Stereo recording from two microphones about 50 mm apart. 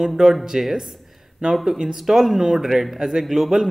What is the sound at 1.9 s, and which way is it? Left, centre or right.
Speech, centre.